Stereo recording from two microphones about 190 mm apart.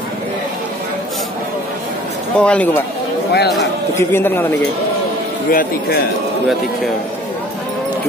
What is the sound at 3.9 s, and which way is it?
Speech, 10° left (ahead or behind).